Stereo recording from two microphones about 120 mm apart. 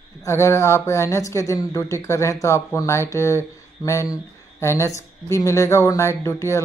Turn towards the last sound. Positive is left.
turn(degrees=25)  # may be behind; listen again after turning